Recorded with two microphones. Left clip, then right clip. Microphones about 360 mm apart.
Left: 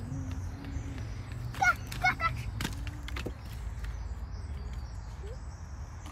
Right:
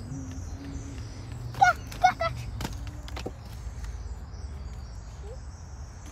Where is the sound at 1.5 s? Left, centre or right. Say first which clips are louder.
Right 6 dB; right.